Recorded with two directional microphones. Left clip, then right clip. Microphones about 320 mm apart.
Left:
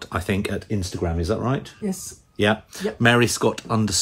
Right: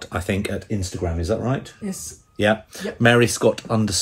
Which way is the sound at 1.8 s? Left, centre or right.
Centre.